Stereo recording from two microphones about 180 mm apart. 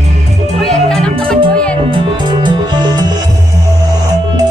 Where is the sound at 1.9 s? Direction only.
25° right (ahead or behind).